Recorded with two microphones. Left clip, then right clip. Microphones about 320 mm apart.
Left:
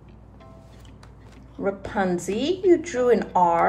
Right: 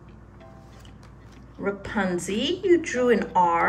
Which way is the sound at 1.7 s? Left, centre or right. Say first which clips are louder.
Left 2 dB; centre.